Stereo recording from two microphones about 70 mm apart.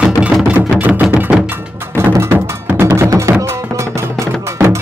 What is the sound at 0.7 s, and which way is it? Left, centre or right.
Music, right.